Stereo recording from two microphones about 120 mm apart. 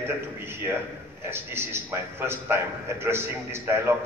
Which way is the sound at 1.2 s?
20° right (ahead or behind).